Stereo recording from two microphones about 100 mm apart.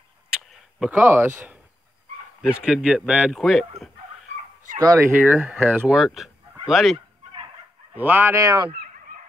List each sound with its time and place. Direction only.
0.3 s a sound: 5° right (ahead or behind)
1.0 s a man's voice: 25° right (ahead or behind)
3.3 s speech: centre (ahead or behind)
4.7 s speech: 30° right (ahead or behind)
5.2 s a man's voice: 15° right (ahead or behind)
5.9 s speech: centre (ahead or behind)
7.9 s speech: 20° right (ahead or behind)